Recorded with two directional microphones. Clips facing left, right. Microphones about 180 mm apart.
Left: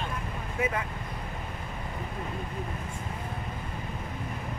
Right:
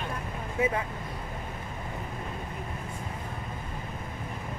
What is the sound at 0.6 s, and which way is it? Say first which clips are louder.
Speech: right 2 dB; 25° right (ahead or behind).